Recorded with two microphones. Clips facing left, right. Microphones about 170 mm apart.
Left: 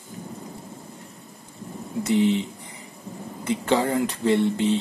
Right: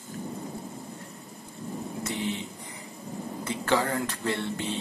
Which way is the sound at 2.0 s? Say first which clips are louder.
Left 13 dB; 20° left (ahead or behind).